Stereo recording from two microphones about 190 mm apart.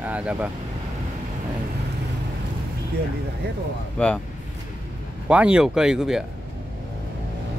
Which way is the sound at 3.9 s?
5° left (ahead or behind).